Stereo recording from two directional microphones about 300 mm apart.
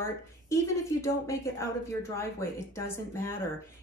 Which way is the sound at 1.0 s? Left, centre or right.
Centre.